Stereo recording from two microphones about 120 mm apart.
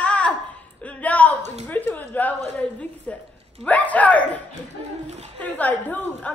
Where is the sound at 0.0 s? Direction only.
10° left (ahead or behind).